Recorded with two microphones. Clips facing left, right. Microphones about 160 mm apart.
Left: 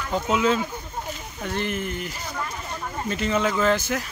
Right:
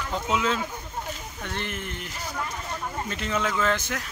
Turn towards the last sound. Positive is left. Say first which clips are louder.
# left 4 dB
turn(degrees=5)  # may be behind; listen again after turning